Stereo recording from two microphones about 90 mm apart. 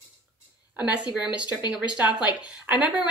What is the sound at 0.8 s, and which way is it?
A woman's voice, 10° right (ahead or behind).